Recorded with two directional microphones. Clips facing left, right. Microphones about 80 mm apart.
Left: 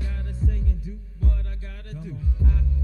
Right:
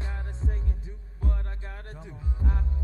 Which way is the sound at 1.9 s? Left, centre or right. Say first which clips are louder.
Left 12 dB; right.